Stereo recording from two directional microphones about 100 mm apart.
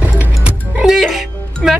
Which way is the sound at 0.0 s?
15° right (ahead or behind).